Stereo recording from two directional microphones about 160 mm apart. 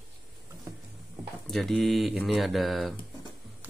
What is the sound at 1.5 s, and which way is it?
Speech, centre (ahead or behind).